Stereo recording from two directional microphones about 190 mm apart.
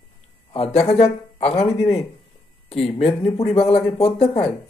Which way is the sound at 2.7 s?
30° left (ahead or behind).